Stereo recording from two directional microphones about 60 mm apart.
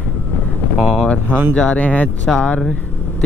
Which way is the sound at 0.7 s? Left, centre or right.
Centre.